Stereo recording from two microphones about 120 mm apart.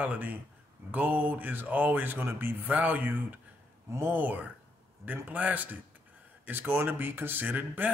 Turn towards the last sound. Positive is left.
turn(degrees=-15)  # may be behind; listen again after turning